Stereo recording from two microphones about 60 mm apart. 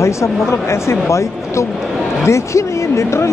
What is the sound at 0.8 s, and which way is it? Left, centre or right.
Speech, left.